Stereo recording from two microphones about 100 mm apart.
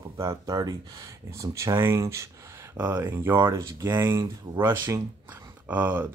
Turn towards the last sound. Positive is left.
turn(degrees=-20)  # may be behind; listen again after turning